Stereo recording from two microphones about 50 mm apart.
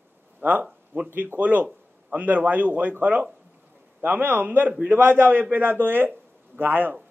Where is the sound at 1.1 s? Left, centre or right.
Right.